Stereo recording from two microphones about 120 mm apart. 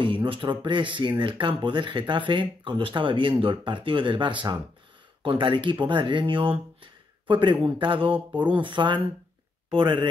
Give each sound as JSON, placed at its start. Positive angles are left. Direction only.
{"t": 0.0, "sound": "speech", "side_deg": -45}